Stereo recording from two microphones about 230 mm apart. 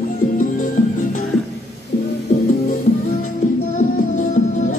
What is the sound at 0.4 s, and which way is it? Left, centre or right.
Music, left.